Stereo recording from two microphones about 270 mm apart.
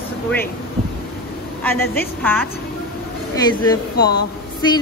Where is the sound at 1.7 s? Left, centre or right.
Left.